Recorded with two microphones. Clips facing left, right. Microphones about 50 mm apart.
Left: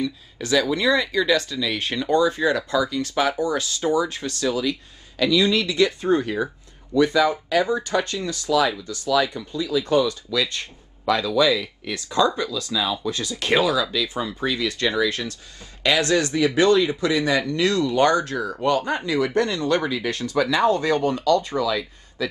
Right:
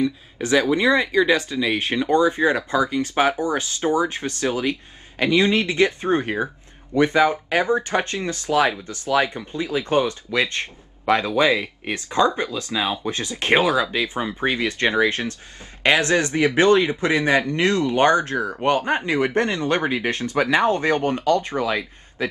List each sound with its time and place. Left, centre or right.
0.0 s speech: right